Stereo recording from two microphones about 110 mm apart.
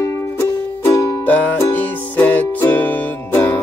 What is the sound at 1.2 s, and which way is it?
Music, 15° left (ahead or behind).